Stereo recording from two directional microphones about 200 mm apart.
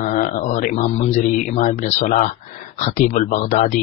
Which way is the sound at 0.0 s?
40° left (ahead or behind).